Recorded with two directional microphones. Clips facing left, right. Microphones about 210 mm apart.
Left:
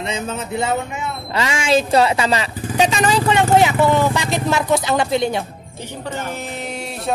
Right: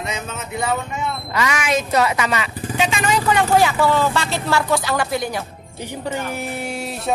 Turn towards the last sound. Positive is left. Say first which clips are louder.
# right 1 dB
turn(degrees=-5)  # may be behind; listen again after turning